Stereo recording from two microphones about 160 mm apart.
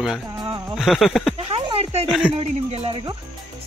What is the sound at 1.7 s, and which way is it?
Speech, 40° right (ahead or behind).